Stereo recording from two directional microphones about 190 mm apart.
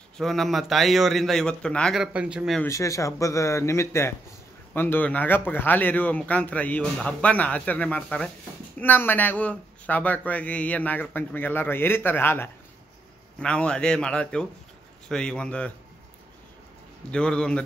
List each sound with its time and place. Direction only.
0.2 s a man's voice: centre (ahead or behind)
2.6 s a man's voice: 15° left (ahead or behind)
17.1 s a man's voice: 5° left (ahead or behind)